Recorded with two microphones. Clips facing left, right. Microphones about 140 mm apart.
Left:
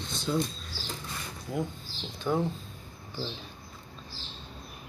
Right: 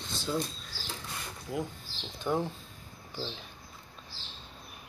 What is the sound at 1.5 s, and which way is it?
Speech, 5° right (ahead or behind).